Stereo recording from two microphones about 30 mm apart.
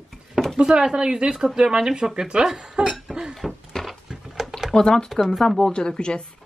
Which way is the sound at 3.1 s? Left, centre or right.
Right.